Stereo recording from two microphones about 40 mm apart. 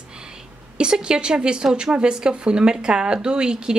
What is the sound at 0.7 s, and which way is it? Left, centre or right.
A woman's voice, right.